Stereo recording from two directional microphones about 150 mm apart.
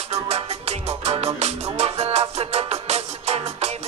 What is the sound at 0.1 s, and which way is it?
Music, 45° right (ahead or behind).